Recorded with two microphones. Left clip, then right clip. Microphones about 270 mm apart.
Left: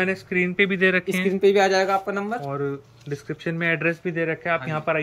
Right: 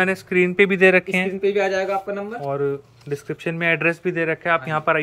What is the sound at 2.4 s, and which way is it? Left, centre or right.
Speech, centre.